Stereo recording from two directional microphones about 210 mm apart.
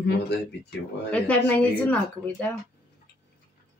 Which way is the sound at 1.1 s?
5° left (ahead or behind).